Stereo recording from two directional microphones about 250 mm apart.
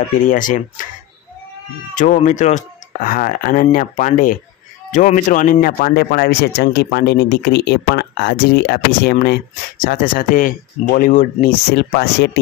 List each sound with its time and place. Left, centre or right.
0.3 s speech: left
2.0 s speech: left